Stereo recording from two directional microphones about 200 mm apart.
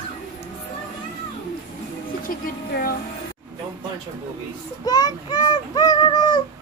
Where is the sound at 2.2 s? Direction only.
50° left (ahead or behind).